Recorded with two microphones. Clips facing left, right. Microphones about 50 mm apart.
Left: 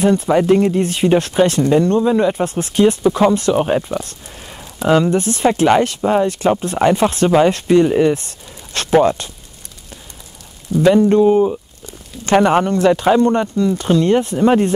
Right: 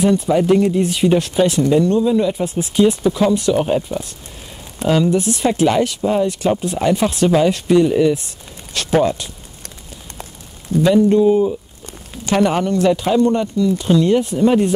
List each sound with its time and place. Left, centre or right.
0.0 s speech: left
2.0 s speech: left
2.4 s speech: left
3.0 s speech: left
5.1 s speech: left
7.2 s speech: left
10.7 s speech: right
11.2 s speech: centre
12.3 s speech: left